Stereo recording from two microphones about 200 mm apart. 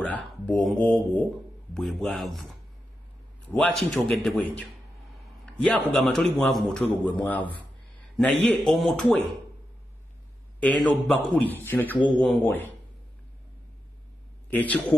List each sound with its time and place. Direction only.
0.0 s speech: 5° left (ahead or behind)
3.4 s speech: 5° left (ahead or behind)
5.4 s a sound: 5° left (ahead or behind)
5.9 s a man's voice: 5° left (ahead or behind)
10.6 s a man's voice: 5° left (ahead or behind)
14.5 s a man's voice: 10° left (ahead or behind)